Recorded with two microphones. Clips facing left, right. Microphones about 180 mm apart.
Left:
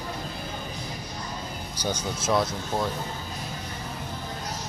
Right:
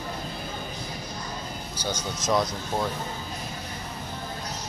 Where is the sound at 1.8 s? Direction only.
5° left (ahead or behind).